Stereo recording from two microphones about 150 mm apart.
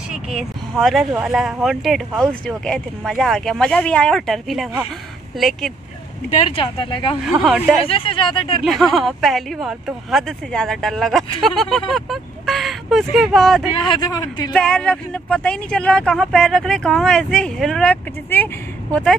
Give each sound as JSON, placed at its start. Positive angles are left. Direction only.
{"t": 0.1, "sound": "speech", "side_deg": -5}
{"t": 6.4, "sound": "speech", "side_deg": 35}
{"t": 7.2, "sound": "speech", "side_deg": -5}
{"t": 7.9, "sound": "speech", "side_deg": 35}
{"t": 8.6, "sound": "speech", "side_deg": 0}
{"t": 13.8, "sound": "speech", "side_deg": 30}
{"t": 14.5, "sound": "speech", "side_deg": 5}